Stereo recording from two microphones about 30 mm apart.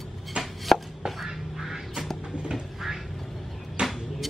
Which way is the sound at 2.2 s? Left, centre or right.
Right.